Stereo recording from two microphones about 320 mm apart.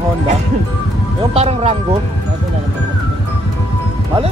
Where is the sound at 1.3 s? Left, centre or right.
Centre.